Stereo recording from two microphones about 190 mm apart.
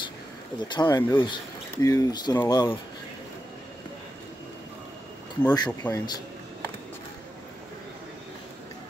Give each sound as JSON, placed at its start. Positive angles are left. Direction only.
{"t": 0.6, "sound": "speech", "side_deg": 25}
{"t": 0.8, "sound": "speech", "side_deg": 15}
{"t": 5.7, "sound": "speech", "side_deg": 10}